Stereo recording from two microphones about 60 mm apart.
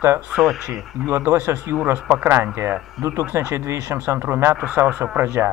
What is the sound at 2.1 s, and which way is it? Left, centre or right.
Speech, right.